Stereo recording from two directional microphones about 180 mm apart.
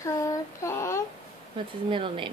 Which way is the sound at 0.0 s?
15° left (ahead or behind).